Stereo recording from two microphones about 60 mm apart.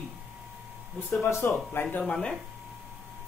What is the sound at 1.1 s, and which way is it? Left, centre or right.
Speech, left.